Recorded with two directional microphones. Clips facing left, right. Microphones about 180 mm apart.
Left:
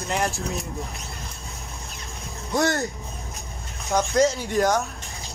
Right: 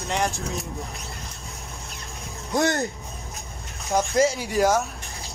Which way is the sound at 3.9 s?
5° right (ahead or behind).